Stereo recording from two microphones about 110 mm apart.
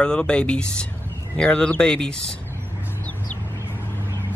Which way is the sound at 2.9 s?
20° left (ahead or behind).